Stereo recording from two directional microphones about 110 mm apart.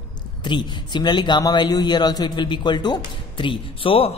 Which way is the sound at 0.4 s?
45° left (ahead or behind).